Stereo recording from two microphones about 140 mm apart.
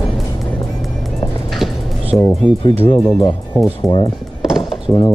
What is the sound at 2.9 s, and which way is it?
Speech, 20° left (ahead or behind).